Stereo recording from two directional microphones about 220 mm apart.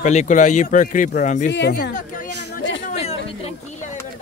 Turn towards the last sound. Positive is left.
turn(degrees=25)  # may be behind; listen again after turning